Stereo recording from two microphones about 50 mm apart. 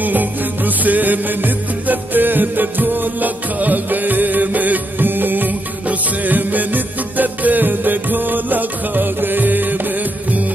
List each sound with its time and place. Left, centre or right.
0.0 s music: right